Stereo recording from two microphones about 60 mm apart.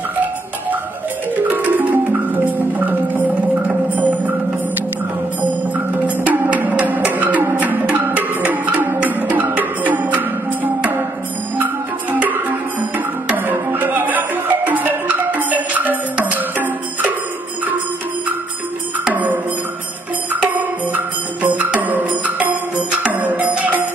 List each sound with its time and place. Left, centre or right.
1.4 s music: right
6.0 s music: right
19.1 s music: right
20.4 s music: right